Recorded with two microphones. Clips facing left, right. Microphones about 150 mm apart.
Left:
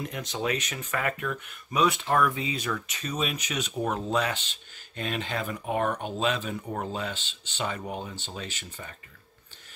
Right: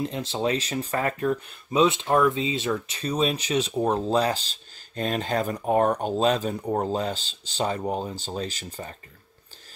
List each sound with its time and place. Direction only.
0.0 s speech: 30° right (ahead or behind)